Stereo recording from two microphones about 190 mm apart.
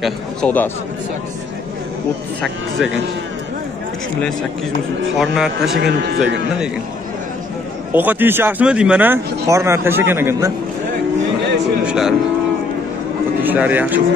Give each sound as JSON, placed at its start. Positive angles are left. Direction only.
{"t": 0.0, "sound": "a man's voice", "side_deg": 5}
{"t": 5.2, "sound": "speech", "side_deg": 0}
{"t": 5.8, "sound": "speech", "side_deg": -70}
{"t": 7.9, "sound": "speech", "side_deg": -10}
{"t": 11.8, "sound": "speech", "side_deg": -5}
{"t": 13.4, "sound": "speech", "side_deg": -10}